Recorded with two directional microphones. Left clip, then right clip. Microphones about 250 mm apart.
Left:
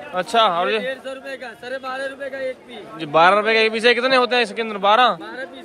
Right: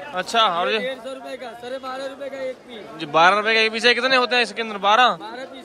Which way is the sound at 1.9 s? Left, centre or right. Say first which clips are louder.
Left 5 dB; centre.